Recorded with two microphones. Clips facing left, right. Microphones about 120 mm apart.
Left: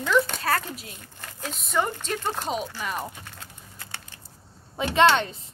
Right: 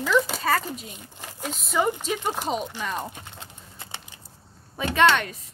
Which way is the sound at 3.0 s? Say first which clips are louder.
Right 1 dB; 20° right (ahead or behind).